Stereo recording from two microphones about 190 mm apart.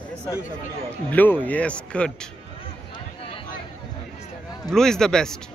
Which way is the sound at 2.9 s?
25° left (ahead or behind).